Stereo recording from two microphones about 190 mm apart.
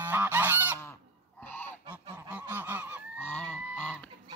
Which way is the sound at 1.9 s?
10° right (ahead or behind).